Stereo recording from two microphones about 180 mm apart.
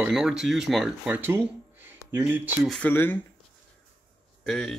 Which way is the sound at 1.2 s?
10° right (ahead or behind).